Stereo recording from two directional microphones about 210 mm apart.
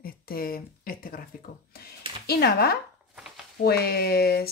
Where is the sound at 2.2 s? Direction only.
50° left (ahead or behind).